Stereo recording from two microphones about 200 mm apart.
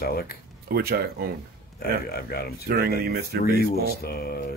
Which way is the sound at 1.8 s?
50° left (ahead or behind).